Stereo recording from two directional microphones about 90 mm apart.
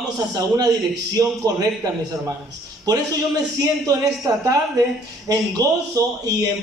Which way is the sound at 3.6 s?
45° right (ahead or behind).